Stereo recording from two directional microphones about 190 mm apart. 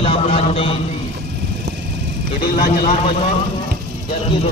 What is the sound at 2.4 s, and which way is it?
Speech, 50° left (ahead or behind).